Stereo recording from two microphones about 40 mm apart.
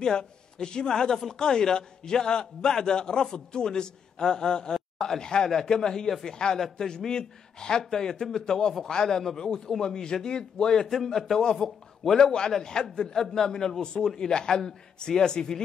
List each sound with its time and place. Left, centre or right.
0.0 s a man's voice: centre
12.2 s a man's voice: centre